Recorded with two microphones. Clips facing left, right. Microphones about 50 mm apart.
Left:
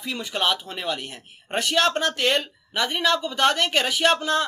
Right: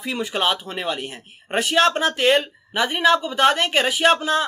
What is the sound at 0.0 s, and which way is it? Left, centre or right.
Speech, centre.